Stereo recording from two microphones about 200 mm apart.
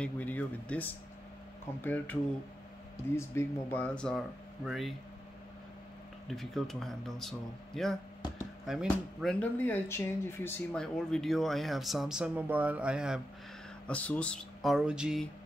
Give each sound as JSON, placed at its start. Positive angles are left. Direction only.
{"t": 0.0, "sound": "speech", "side_deg": 5}
{"t": 3.2, "sound": "speech", "side_deg": 10}
{"t": 6.2, "sound": "speech", "side_deg": 0}
{"t": 13.8, "sound": "speech", "side_deg": 5}